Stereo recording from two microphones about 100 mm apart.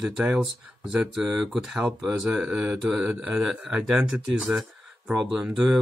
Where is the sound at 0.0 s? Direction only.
5° right (ahead or behind).